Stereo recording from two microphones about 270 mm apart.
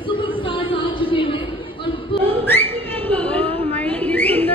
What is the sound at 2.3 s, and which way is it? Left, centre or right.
Whistling, centre.